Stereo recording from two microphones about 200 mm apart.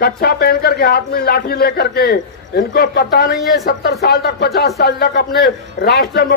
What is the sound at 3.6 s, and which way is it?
A man's voice, 50° left (ahead or behind).